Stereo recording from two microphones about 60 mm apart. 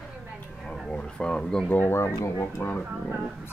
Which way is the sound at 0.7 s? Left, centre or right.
Centre.